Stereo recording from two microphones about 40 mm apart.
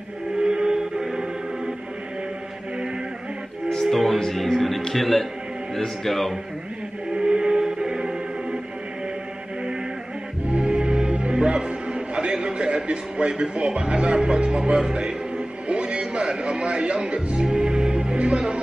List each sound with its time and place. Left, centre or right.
0.4 s music: right
3.8 s speech: centre
7.2 s music: right
10.5 s music: right